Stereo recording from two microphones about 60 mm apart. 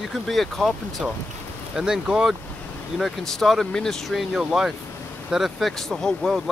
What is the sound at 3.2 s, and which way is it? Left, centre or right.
Speech, centre.